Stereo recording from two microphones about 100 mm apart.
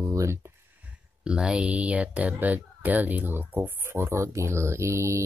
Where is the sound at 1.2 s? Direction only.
10° right (ahead or behind).